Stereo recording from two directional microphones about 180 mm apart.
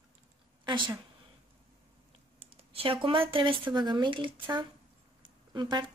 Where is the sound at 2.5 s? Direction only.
30° right (ahead or behind).